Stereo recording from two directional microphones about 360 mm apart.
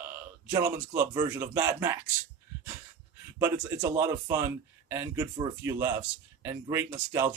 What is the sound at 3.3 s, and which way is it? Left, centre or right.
A man's voice, centre.